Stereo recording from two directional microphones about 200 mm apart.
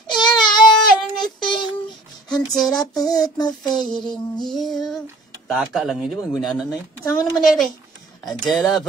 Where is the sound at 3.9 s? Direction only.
20° left (ahead or behind).